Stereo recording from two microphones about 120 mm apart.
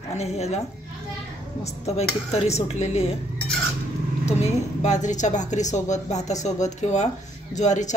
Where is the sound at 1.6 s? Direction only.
65° left (ahead or behind).